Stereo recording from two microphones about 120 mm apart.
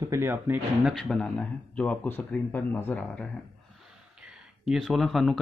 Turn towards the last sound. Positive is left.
turn(degrees=0)  # may be behind; listen again after turning